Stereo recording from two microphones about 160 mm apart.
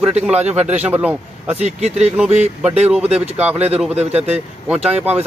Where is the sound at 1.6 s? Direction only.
45° right (ahead or behind).